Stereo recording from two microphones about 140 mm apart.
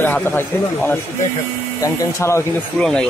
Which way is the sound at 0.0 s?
10° left (ahead or behind).